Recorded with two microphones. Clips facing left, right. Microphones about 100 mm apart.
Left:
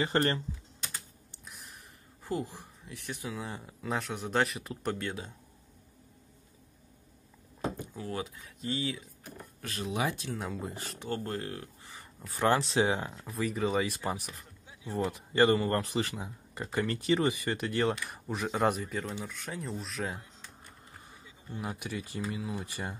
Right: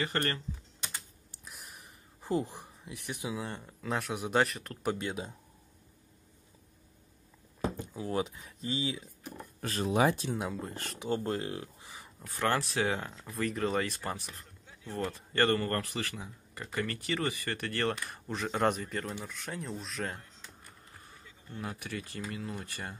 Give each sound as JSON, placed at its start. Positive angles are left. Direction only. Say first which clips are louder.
{"t": 0.0, "sound": "speech", "louder": "left 4 dB", "side_deg": 25}
{"t": 1.3, "sound": "a sound", "louder": "even", "side_deg": 0}
{"t": 2.2, "sound": "speech", "louder": "right 3 dB", "side_deg": -20}
{"t": 3.3, "sound": "speech", "louder": "right 1 dB", "side_deg": 5}
{"t": 4.9, "sound": "speech", "louder": "right 1 dB", "side_deg": -20}
{"t": 8.1, "sound": "speech", "louder": "right 6 dB", "side_deg": -25}
{"t": 9.6, "sound": "speech", "louder": "right 5 dB", "side_deg": -40}
{"t": 10.3, "sound": "speech", "louder": "right 1 dB", "side_deg": -5}
{"t": 11.0, "sound": "speech", "louder": "right 3 dB", "side_deg": -15}
{"t": 12.4, "sound": "speech", "louder": "left 4 dB", "side_deg": 20}
{"t": 13.3, "sound": "speech", "louder": "left 1 dB", "side_deg": 0}
{"t": 21.5, "sound": "speech", "louder": "left 2 dB", "side_deg": 15}